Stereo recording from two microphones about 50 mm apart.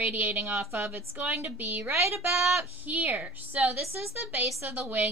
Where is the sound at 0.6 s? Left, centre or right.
Right.